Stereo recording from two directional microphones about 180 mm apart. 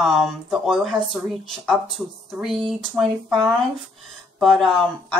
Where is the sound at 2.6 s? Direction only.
Centre (ahead or behind).